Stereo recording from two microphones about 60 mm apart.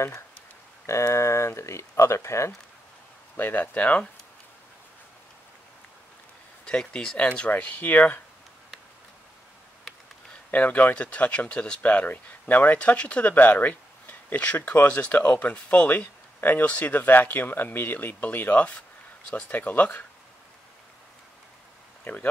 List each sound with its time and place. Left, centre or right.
0.8 s speech: left
3.3 s speech: left
6.6 s speech: centre
10.5 s speech: left
12.7 s speech: left
13.3 s speech: left
22.0 s speech: left